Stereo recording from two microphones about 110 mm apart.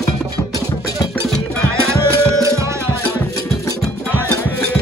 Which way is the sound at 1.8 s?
25° right (ahead or behind).